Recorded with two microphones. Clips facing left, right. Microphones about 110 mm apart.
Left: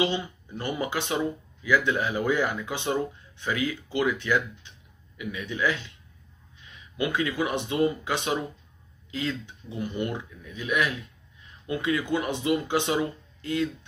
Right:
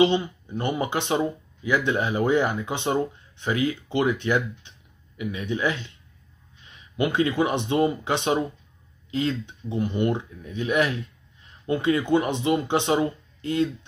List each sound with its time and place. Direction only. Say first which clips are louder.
0.0 s speech: right 7 dB; 20° right (ahead or behind)